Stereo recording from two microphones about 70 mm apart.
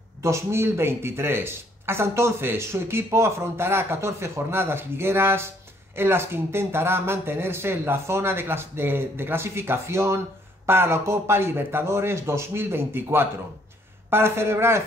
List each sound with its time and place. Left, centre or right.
0.2 s speech: right